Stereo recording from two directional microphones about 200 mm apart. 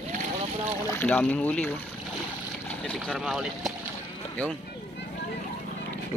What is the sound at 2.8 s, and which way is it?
Speech, centre (ahead or behind).